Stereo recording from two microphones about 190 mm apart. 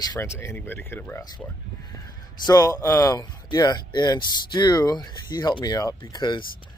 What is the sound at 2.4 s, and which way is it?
Speech, 20° left (ahead or behind).